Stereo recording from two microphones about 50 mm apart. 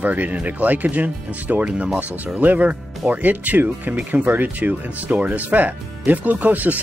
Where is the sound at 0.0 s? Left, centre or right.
Right.